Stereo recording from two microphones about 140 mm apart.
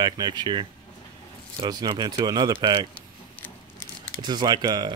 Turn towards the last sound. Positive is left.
turn(degrees=-30)  # may be behind; listen again after turning